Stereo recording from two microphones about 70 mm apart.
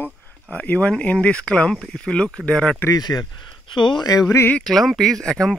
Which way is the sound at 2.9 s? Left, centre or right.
Left.